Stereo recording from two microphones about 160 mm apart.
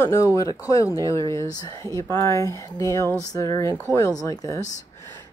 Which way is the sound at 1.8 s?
20° left (ahead or behind).